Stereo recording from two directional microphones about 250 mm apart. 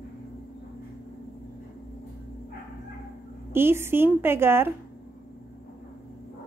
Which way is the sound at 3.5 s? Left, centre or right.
Centre.